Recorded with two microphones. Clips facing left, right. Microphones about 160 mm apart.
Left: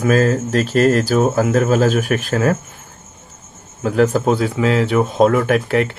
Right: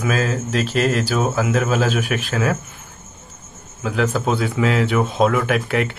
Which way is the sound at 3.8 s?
40° left (ahead or behind).